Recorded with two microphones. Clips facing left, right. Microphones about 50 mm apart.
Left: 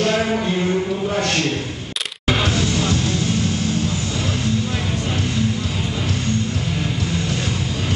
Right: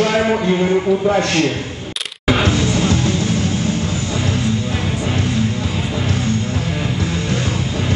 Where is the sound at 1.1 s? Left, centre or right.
Right.